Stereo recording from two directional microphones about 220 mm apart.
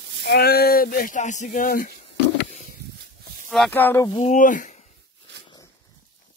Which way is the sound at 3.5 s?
5° left (ahead or behind).